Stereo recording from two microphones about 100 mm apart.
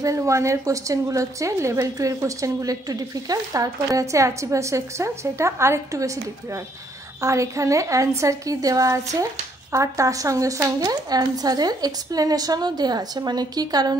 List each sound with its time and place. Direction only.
0.0 s a woman's voice: 30° right (ahead or behind)